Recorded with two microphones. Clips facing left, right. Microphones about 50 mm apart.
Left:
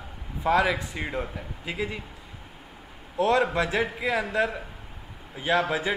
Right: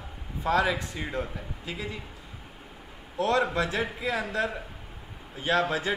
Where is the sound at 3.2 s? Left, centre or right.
Left.